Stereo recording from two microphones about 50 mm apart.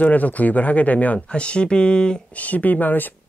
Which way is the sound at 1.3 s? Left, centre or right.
Left.